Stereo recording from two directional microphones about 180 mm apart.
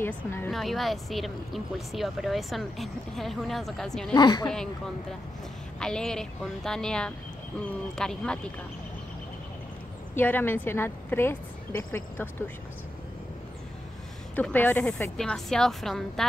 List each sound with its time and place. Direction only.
0.0 s a woman's voice: 10° left (ahead or behind)
0.5 s speech: centre (ahead or behind)
4.1 s a woman's voice: 20° left (ahead or behind)
5.8 s speech: 5° left (ahead or behind)
10.1 s a woman's voice: 10° left (ahead or behind)
14.3 s speech: 10° left (ahead or behind)